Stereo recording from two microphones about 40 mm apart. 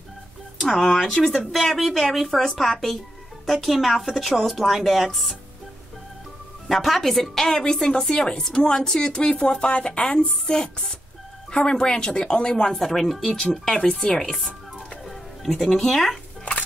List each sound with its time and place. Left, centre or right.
0.7 s a woman's voice: centre
6.7 s a woman's voice: centre; by 10.1 s left
10.1 s a woman's voice: centre
12.7 s a woman's voice: centre
13.5 s a woman's voice: left